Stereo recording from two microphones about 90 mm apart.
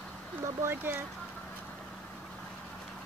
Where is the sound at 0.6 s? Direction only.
25° right (ahead or behind).